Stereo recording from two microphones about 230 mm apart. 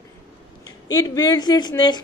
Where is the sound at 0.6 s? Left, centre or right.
Centre.